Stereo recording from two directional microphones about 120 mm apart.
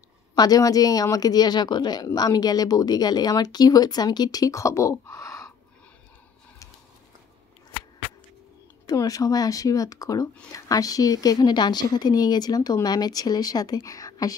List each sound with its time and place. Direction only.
0.3 s speech: 30° left (ahead or behind)
8.8 s speech: 30° left (ahead or behind)